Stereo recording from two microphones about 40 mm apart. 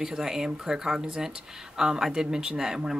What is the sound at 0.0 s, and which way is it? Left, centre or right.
Speech, centre.